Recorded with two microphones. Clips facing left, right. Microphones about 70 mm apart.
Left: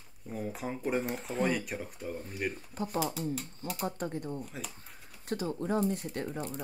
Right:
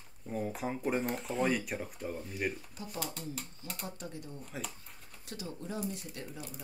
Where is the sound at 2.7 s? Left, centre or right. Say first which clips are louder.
Left 8 dB; left.